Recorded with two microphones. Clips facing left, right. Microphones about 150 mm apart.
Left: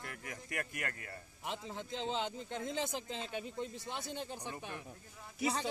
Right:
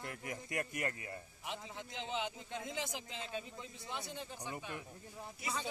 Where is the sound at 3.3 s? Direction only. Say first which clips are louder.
Left 4 dB; 60° left (ahead or behind).